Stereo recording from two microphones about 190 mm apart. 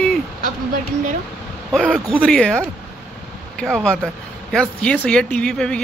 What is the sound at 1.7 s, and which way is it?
Speech, 5° left (ahead or behind).